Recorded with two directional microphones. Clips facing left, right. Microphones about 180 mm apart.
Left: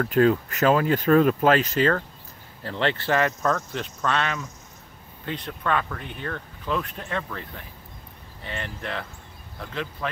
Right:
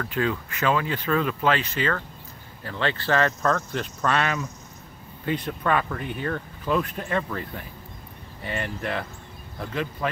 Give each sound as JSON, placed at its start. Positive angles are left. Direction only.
{"t": 0.0, "sound": "speech", "side_deg": 45}
{"t": 2.6, "sound": "speech", "side_deg": 25}